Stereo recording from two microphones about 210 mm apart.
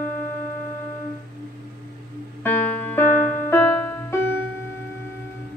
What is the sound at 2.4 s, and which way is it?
Music, 10° left (ahead or behind).